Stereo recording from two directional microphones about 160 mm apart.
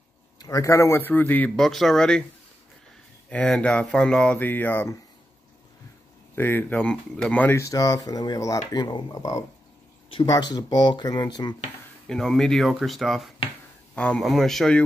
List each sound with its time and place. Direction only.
0.4 s speech: 20° left (ahead or behind); by 2.2 s 5° left (ahead or behind)
3.3 s speech: 5° left (ahead or behind)
6.3 s speech: 15° left (ahead or behind)
12.1 s speech: 5° left (ahead or behind)